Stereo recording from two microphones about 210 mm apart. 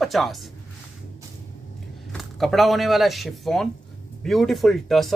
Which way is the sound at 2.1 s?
Centre (ahead or behind).